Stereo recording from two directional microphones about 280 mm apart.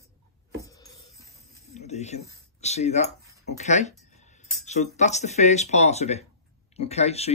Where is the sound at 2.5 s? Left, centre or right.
Left.